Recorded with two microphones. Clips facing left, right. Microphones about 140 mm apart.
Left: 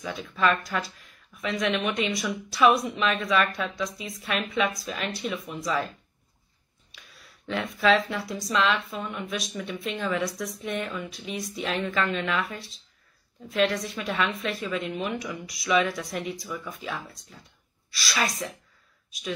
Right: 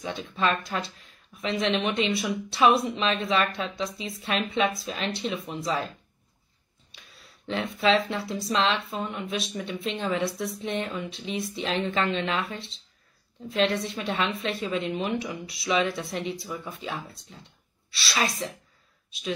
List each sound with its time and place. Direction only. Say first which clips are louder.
0.0 s a woman's voice: left 1 dB; 30° right (ahead or behind)
7.4 s a woman's voice: left 1 dB; 30° right (ahead or behind)